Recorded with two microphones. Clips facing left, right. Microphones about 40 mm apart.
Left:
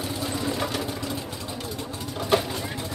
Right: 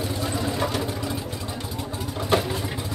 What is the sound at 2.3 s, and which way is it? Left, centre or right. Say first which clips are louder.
Vehicle: even; centre.